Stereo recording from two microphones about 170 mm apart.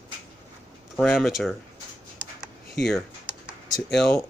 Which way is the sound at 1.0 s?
Centre (ahead or behind).